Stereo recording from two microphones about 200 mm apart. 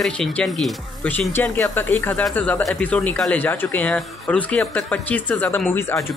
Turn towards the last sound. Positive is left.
turn(degrees=10)  # may be behind; listen again after turning